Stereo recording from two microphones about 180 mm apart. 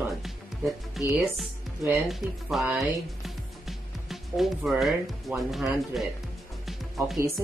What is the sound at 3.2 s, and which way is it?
Music, centre (ahead or behind).